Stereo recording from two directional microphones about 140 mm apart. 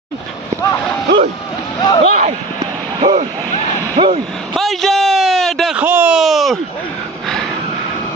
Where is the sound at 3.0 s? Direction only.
40° right (ahead or behind).